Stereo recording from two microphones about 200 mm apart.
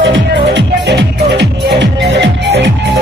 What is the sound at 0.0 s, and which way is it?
Music, 65° right (ahead or behind).